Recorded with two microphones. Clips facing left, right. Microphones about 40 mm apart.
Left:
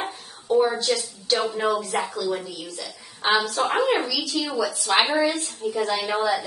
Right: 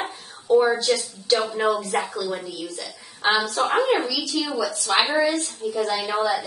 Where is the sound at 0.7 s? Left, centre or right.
Centre.